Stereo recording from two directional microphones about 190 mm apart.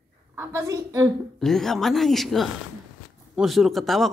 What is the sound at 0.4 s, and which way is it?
Speech, 15° right (ahead or behind).